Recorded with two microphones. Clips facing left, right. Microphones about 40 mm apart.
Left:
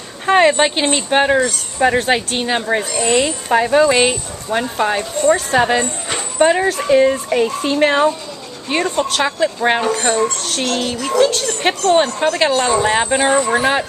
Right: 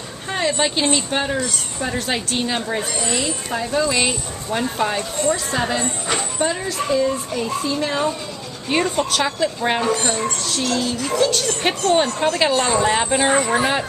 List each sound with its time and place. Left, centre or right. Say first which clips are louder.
0.3 s speech: left 9 dB; left
0.7 s speech: left 3 dB; left
2.1 s speech: left 4 dB; left
3.0 s speech: left 7 dB; left
3.9 s speech: left 6 dB; left
5.3 s speech: left 9 dB; left
8.6 s speech: left 2 dB; centre
9.2 s speech: left 4 dB; centre
9.8 s speech: left 4 dB; left
10.4 s speech: left 2 dB; left
11.1 s speech: left 5 dB; centre